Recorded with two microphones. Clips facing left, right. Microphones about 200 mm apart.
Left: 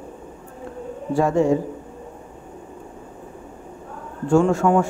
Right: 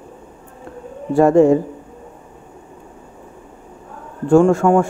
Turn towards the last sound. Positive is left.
turn(degrees=-50)  # may be behind; listen again after turning